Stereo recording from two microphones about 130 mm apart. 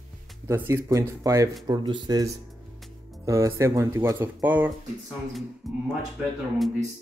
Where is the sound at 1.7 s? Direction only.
35° right (ahead or behind); by 4.6 s 15° right (ahead or behind).